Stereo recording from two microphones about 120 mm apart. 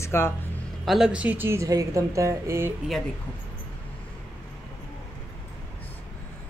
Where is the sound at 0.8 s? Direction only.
5° right (ahead or behind); by 2.7 s 20° right (ahead or behind).